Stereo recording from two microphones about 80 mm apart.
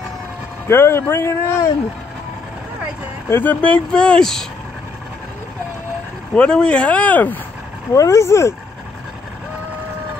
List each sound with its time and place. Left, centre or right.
0.7 s a man's voice: left
3.3 s speech: left; by 4.5 s centre
6.3 s speech: centre
7.9 s a man's voice: left